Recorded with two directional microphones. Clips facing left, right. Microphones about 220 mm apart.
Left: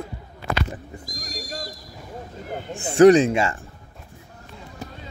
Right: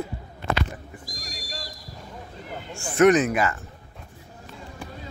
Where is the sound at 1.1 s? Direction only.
40° left (ahead or behind).